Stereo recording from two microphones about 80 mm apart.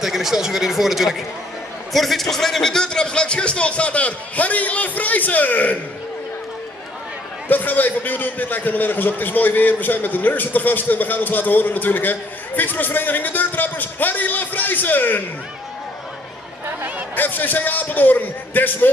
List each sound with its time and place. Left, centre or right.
0.0 s a man's voice: centre; by 5.8 s left
7.4 s a man's voice: left
17.1 s a man's voice: left